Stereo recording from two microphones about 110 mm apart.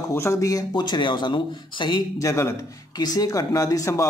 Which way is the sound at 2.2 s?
30° left (ahead or behind).